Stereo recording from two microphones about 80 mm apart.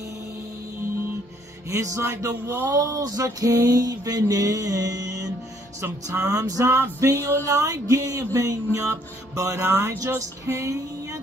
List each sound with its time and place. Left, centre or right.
1.7 s speech: right
6.7 s a sound: right
9.9 s music: right